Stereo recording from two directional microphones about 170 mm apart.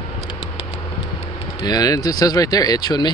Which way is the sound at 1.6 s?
20° left (ahead or behind).